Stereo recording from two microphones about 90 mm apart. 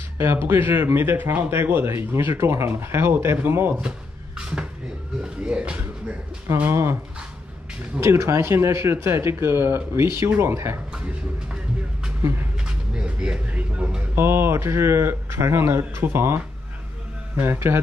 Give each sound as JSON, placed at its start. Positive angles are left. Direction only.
{"t": 0.2, "sound": "speech", "side_deg": -25}
{"t": 5.2, "sound": "a sound", "side_deg": -10}
{"t": 6.6, "sound": "speech", "side_deg": -25}
{"t": 8.0, "sound": "speech", "side_deg": -30}
{"t": 12.6, "sound": "a sound", "side_deg": -10}
{"t": 14.1, "sound": "speech", "side_deg": -25}
{"t": 17.4, "sound": "speech", "side_deg": -30}